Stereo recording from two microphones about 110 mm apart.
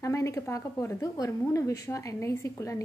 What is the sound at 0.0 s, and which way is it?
A woman's voice, 30° left (ahead or behind).